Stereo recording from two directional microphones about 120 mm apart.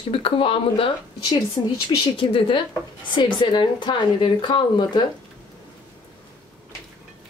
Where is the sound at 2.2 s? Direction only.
50° left (ahead or behind).